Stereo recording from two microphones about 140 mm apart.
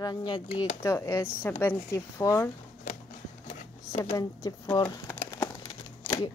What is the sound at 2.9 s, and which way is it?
Music, 70° left (ahead or behind).